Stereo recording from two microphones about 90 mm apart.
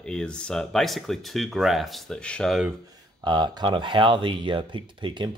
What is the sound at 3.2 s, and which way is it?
Speech, 55° right (ahead or behind).